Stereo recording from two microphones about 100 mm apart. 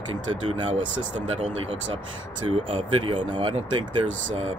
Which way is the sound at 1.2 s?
70° right (ahead or behind).